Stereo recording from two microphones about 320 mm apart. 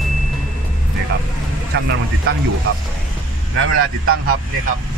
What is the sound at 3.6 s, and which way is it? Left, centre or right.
Speech, right.